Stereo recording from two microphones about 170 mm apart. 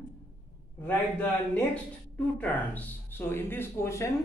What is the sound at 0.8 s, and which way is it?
Speech, 10° left (ahead or behind).